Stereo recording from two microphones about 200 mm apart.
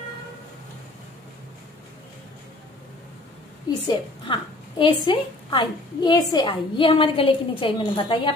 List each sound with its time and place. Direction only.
3.8 s a woman's voice: 25° left (ahead or behind)